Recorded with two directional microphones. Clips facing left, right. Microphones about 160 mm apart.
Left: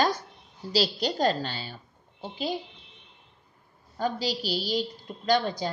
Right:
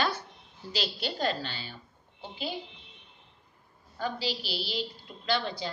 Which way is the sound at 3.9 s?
40° left (ahead or behind).